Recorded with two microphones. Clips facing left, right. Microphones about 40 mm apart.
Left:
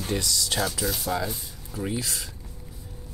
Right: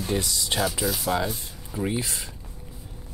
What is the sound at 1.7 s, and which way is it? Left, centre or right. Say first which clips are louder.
Speech: right 2 dB; right.